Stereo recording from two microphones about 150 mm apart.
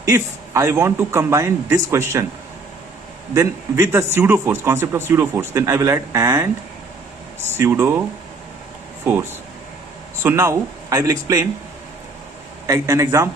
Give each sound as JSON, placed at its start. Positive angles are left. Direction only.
{"t": 0.0, "sound": "a man's voice", "side_deg": -20}
{"t": 3.3, "sound": "a man's voice", "side_deg": -20}
{"t": 7.5, "sound": "a man's voice", "side_deg": -15}
{"t": 10.2, "sound": "a man's voice", "side_deg": -20}
{"t": 12.6, "sound": "a man's voice", "side_deg": -20}